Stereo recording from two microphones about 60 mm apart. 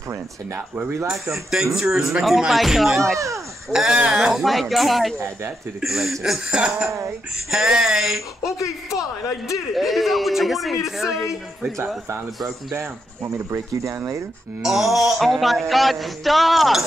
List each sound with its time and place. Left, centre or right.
0.6 s speech: right
1.3 s speech: centre
3.7 s speech: centre
6.5 s speech: centre
7.5 s speech: centre
12.7 s speech: right
14.6 s speech: centre